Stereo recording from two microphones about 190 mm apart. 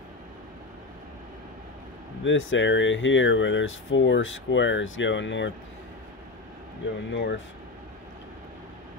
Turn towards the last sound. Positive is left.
turn(degrees=65)  # may be behind; listen again after turning